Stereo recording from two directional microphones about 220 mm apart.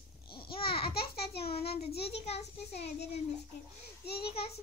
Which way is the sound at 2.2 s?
30° left (ahead or behind).